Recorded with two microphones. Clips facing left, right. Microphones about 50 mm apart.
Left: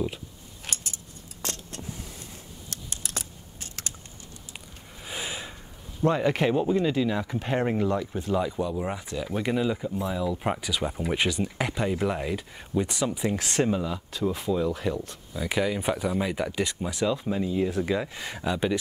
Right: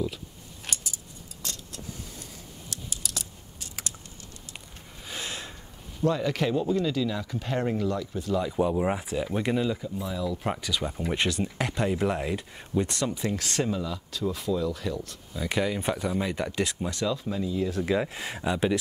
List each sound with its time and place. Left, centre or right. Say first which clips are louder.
1.4 s vehicle: left 4 dB; left
2.7 s computer keyboard: left 1 dB; left
5.0 s gasp: left 2 dB; centre
6.0 s speech: left 3 dB; left
8.7 s speech: right 4 dB; centre
9.3 s speech: left 1 dB; centre
9.7 s speech: left 3 dB; centre
15.4 s speech: left 1 dB; centre
16.9 s speech: left 3 dB; centre
17.8 s speech: right 1 dB; centre